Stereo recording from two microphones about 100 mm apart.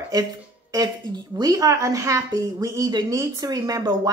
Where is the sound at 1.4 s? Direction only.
35° right (ahead or behind).